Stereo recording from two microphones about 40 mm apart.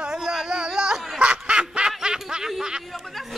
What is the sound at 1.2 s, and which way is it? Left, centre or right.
Quack, right.